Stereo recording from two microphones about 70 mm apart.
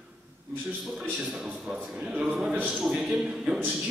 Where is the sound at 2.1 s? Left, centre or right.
Centre.